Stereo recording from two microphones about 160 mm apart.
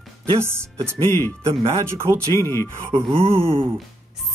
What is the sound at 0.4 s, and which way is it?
Speech, 15° right (ahead or behind).